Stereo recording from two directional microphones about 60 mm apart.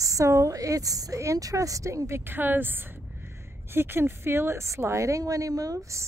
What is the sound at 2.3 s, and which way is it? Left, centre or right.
A woman's voice, right.